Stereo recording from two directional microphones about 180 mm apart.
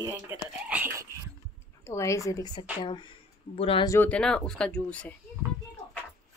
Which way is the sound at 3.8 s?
15° left (ahead or behind).